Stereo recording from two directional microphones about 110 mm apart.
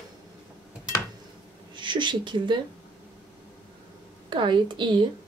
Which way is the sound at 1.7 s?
45° right (ahead or behind).